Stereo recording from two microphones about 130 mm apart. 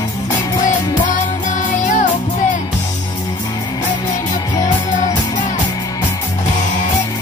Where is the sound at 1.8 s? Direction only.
75° left (ahead or behind).